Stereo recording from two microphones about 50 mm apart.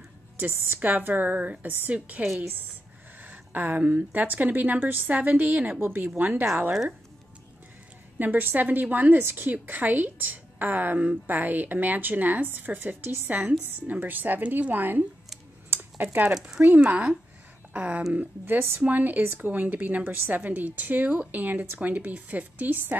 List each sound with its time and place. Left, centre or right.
0.4 s a woman's voice: right
6.7 s speech: centre
8.2 s a woman's voice: right
9.2 s speech: right
9.5 s a woman's voice: right
15.7 s a sound: right
16.3 s speech: centre
18.4 s speech: right
18.8 s a woman's voice: right